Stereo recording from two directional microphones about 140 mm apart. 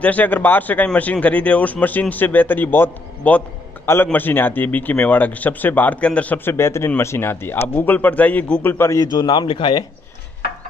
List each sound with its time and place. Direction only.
0.0 s speech: 10° left (ahead or behind)
9.2 s speech: 35° left (ahead or behind)